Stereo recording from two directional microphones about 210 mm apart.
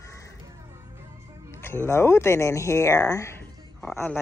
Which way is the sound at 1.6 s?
10° left (ahead or behind).